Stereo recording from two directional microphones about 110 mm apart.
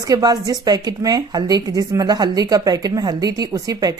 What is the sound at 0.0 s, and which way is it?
A woman's voice, 35° right (ahead or behind).